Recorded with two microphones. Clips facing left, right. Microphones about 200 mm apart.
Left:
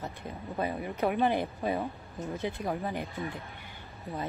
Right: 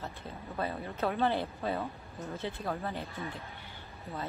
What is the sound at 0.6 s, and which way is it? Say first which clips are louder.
Speech: left 3 dB; 15° left (ahead or behind).